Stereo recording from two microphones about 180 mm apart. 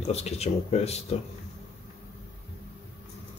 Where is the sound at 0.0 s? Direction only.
35° left (ahead or behind).